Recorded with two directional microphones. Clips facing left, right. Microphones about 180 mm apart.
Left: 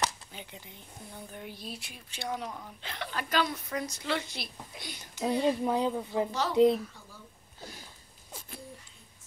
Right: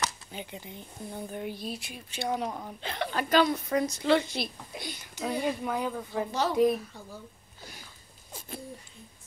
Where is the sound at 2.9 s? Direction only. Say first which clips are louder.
Right 6 dB; 40° right (ahead or behind).